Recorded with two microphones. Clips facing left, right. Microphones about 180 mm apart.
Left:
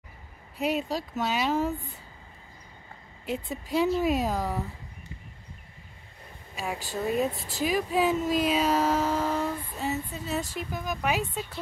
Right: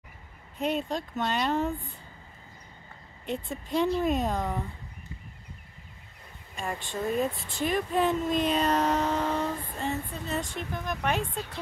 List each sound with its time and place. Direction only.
0.6 s speech: 5° left (ahead or behind)
3.3 s speech: 5° left (ahead or behind)
6.5 s speech: 5° left (ahead or behind)
7.3 s speech: 40° left (ahead or behind)
7.6 s speech: centre (ahead or behind)